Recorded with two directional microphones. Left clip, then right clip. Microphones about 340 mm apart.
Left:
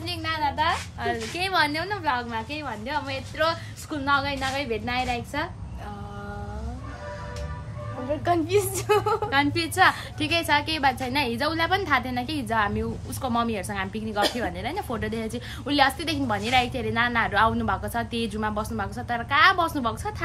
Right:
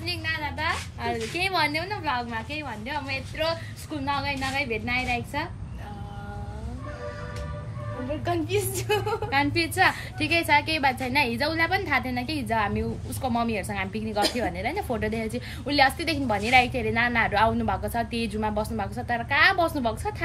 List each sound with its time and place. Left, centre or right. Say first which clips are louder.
0.0 s a woman's voice: left 3 dB; centre
8.3 s a woman's voice: left 4 dB; centre
9.3 s a woman's voice: left 1 dB; centre